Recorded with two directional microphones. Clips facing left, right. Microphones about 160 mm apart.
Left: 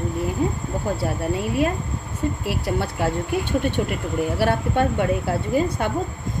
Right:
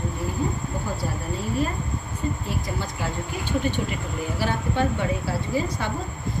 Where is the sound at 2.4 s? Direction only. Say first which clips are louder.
Left 5 dB; 75° left (ahead or behind).